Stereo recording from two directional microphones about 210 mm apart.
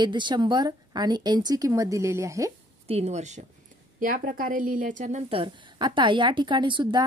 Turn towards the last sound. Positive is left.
turn(degrees=-20)  # may be behind; listen again after turning